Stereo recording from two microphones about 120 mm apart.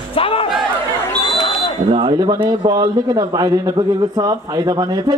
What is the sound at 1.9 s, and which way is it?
A man's voice, 40° right (ahead or behind).